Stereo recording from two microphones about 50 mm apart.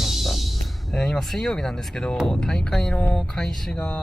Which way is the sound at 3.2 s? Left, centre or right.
Centre.